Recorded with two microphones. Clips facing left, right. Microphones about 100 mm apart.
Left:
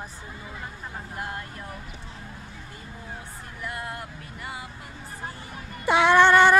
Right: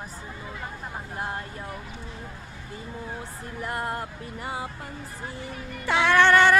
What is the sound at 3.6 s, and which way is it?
Vehicle, 35° right (ahead or behind).